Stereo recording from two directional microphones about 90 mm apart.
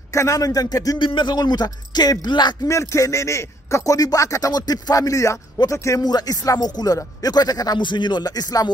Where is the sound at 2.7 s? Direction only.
35° left (ahead or behind).